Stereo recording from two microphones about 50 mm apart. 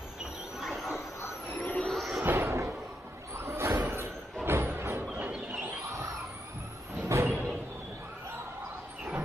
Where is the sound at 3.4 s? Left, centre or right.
Right.